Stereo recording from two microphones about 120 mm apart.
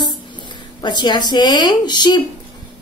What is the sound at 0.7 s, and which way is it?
A woman's voice, 40° left (ahead or behind).